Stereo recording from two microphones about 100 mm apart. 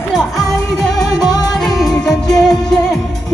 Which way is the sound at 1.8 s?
5° left (ahead or behind).